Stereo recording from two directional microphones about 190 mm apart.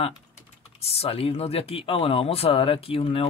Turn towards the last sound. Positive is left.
turn(degrees=30)  # may be behind; listen again after turning